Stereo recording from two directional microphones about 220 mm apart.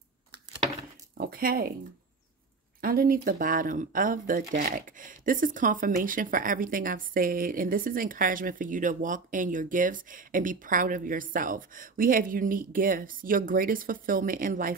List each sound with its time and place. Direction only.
1.1 s speech: 40° right (ahead or behind)
2.8 s speech: 40° right (ahead or behind)